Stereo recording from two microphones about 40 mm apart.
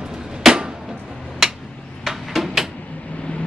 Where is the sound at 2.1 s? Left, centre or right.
Centre.